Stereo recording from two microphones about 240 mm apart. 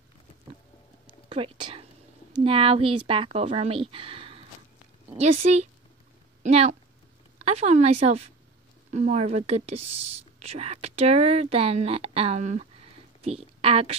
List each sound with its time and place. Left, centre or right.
1.3 s a woman's voice: right